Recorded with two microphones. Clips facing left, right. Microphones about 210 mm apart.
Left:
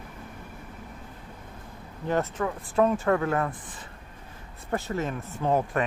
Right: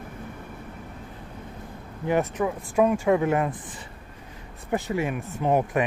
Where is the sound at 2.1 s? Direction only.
15° right (ahead or behind).